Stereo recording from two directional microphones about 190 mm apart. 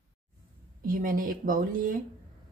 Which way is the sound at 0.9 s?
50° right (ahead or behind).